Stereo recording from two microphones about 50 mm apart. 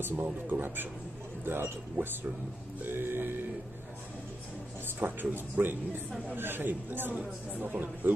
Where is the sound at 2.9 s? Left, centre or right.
Right.